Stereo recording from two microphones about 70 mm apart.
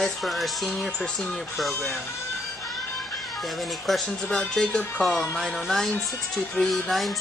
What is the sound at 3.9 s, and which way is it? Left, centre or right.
Speech, centre.